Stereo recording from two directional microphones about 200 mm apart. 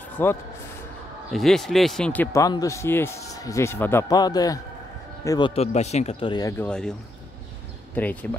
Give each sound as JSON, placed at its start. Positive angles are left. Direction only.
{"t": 0.2, "sound": "a man's voice", "side_deg": 10}
{"t": 2.3, "sound": "a man's voice", "side_deg": 15}
{"t": 5.5, "sound": "speech", "side_deg": 35}
{"t": 6.6, "sound": "a man's voice", "side_deg": 5}